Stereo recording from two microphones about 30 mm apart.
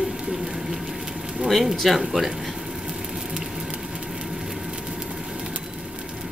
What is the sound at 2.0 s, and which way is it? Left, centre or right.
Speech, centre.